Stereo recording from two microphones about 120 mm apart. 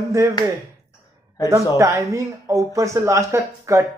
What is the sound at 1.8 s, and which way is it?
Speech, 25° right (ahead or behind).